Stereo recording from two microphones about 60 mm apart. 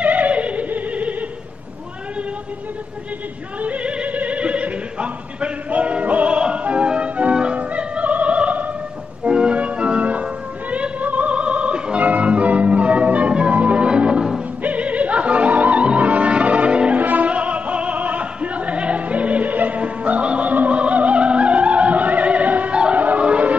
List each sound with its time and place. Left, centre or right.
0.0 s opera: right
3.6 s opera: right
9.3 s music: centre
14.6 s opera: right
17.0 s music: right